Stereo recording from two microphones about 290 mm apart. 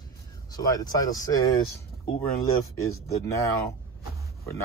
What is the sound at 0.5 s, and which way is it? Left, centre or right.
Speech, centre.